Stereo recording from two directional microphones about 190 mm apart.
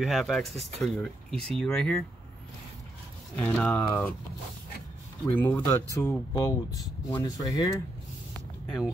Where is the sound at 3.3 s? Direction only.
5° left (ahead or behind).